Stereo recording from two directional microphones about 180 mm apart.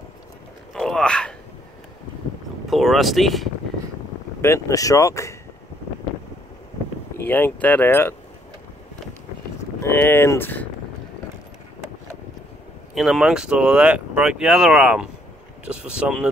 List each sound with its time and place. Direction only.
0.7 s a sound: centre (ahead or behind)
2.7 s speech: centre (ahead or behind)
4.4 s speech: 15° left (ahead or behind)
7.2 s speech: 10° left (ahead or behind)
9.8 s speech: 15° left (ahead or behind)
12.9 s speech: centre (ahead or behind)